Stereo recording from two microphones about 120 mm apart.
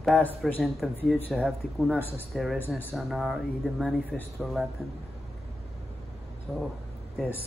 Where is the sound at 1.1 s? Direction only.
15° left (ahead or behind).